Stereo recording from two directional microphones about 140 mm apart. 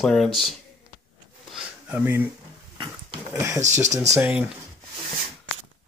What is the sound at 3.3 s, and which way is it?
Speech, 20° right (ahead or behind).